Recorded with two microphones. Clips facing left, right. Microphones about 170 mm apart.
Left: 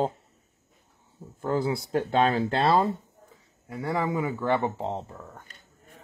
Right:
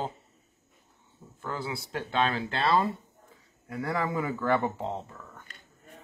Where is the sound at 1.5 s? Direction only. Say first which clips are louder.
Left 9 dB; 45° left (ahead or behind).